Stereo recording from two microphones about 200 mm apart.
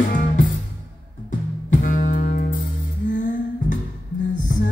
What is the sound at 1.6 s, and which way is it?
Music, 45° left (ahead or behind).